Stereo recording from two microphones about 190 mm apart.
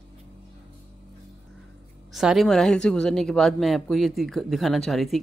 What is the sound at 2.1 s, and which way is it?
Speech, centre (ahead or behind).